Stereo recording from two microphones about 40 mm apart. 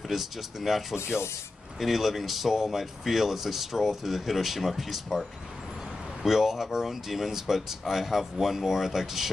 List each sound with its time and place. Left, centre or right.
0.1 s speech: centre
1.1 s speech: centre
1.8 s speech: centre
6.2 s speech: centre